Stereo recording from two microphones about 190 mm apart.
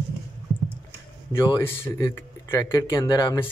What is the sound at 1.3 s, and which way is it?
Speech, 15° left (ahead or behind).